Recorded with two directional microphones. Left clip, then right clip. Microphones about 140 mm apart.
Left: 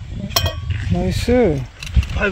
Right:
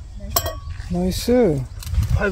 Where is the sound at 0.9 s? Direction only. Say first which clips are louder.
Left 1 dB; 5° right (ahead or behind).